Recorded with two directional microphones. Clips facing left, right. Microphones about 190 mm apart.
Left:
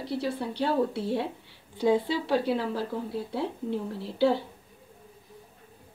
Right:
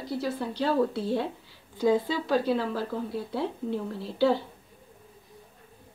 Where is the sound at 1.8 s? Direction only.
30° left (ahead or behind).